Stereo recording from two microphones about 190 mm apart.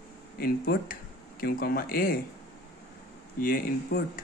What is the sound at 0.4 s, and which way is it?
Speech, 50° left (ahead or behind).